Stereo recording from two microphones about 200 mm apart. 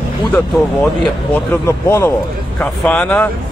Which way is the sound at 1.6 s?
10° left (ahead or behind).